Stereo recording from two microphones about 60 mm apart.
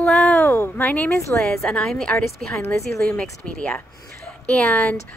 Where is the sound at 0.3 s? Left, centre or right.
Left.